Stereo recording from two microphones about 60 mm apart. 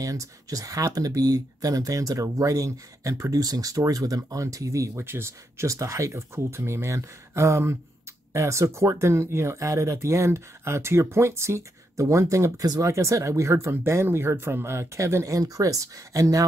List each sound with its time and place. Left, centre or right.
0.0 s speech: right
4.9 s speech: right
5.7 s speech: right
12.8 s speech: right